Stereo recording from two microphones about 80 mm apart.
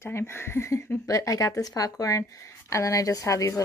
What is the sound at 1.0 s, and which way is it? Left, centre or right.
Speech, left.